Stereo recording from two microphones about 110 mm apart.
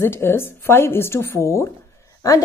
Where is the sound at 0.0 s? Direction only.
20° left (ahead or behind).